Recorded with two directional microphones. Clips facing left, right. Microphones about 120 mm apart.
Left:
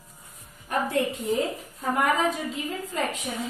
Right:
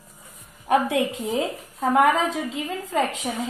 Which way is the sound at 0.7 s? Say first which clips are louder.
Right 5 dB; 90° right.